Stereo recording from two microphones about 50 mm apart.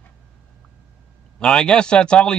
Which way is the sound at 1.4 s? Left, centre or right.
Centre.